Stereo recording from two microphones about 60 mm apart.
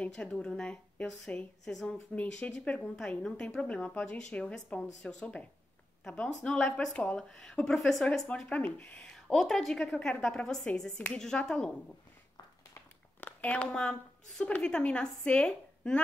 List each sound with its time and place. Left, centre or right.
0.0 s a woman's voice: centre
1.6 s speech: centre
1.9 s a woman's voice: centre
8.5 s a woman's voice: left
9.1 s a woman's voice: centre
13.2 s a woman's voice: left